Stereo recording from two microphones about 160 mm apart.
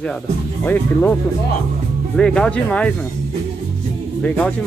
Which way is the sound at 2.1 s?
5° left (ahead or behind).